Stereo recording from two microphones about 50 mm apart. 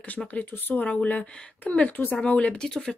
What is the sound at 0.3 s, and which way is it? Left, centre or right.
Speech, left.